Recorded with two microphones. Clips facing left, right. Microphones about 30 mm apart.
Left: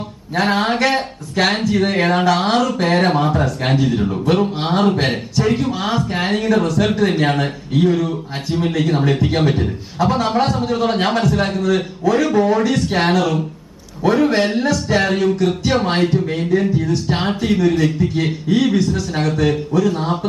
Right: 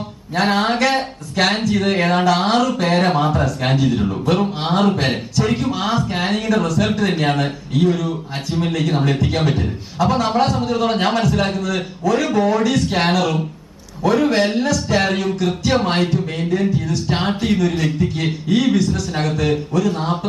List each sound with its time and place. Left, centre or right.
0.4 s speech: centre
8.5 s speech: centre
14.0 s speech: centre
15.0 s speech: centre
15.3 s speech: centre
15.7 s speech: centre
16.0 s speech: centre
17.1 s speech: centre